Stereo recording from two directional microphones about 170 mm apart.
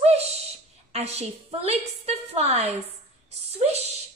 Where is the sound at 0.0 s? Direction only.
40° right (ahead or behind).